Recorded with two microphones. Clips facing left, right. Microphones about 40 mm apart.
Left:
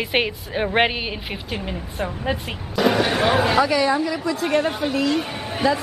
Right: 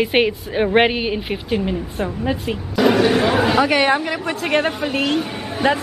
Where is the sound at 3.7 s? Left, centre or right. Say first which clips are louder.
Right 3 dB; right.